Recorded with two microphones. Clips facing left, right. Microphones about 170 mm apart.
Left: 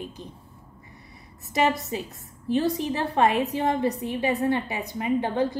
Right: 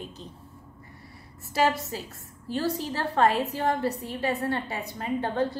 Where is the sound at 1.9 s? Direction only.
20° left (ahead or behind).